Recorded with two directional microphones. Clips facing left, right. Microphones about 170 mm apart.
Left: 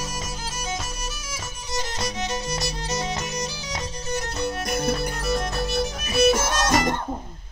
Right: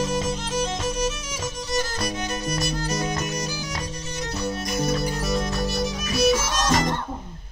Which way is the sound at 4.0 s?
45° left (ahead or behind).